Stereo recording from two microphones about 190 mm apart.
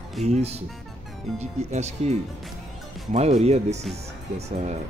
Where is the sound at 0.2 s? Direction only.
35° right (ahead or behind).